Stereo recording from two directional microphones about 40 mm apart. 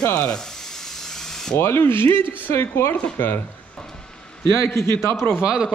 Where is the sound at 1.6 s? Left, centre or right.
Left.